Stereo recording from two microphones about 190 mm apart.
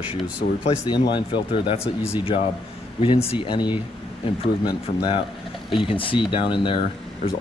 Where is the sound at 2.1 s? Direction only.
30° left (ahead or behind).